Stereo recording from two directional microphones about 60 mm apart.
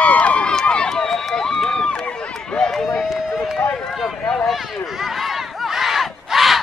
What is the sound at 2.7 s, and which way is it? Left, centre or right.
Run, centre.